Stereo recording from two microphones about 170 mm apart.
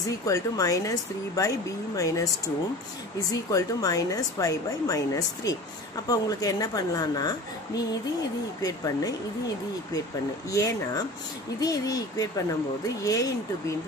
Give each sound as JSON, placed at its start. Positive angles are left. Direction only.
{"t": 0.2, "sound": "a woman's voice", "side_deg": 20}
{"t": 3.3, "sound": "a woman's voice", "side_deg": 20}
{"t": 10.5, "sound": "a woman's voice", "side_deg": 20}